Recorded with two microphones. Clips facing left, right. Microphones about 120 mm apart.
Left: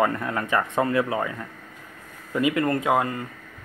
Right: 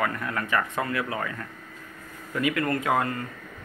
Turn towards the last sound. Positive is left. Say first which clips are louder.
# left 3 dB
turn(degrees=15)  # may be behind; listen again after turning